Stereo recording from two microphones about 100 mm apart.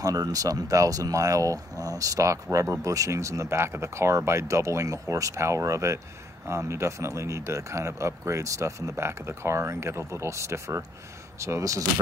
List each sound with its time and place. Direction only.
0.0 s speech: 40° right (ahead or behind)